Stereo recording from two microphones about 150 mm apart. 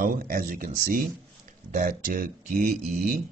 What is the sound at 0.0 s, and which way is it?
A man's voice, 70° right (ahead or behind).